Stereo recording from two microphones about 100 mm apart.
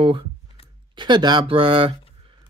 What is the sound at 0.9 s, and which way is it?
Speech, 50° right (ahead or behind).